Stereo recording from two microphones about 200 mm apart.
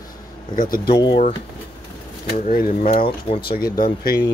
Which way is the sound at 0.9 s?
25° left (ahead or behind).